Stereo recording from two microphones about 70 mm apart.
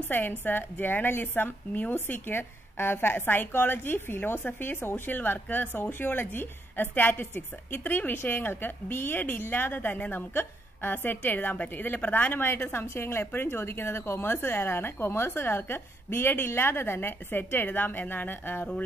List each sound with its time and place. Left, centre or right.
0.1 s a woman's voice: left